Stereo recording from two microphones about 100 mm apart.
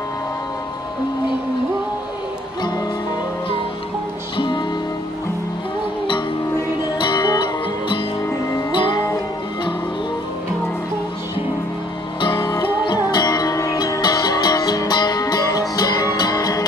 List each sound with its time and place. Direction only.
4.4 s music: 50° left (ahead or behind)
7.0 s music: 45° left (ahead or behind)
8.7 s music: 50° left (ahead or behind)
12.2 s music: 45° left (ahead or behind)